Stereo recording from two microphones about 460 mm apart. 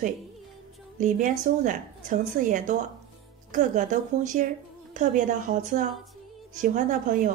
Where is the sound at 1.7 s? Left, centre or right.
Centre.